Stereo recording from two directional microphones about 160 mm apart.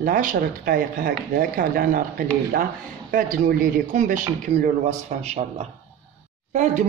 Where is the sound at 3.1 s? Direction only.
60° right (ahead or behind).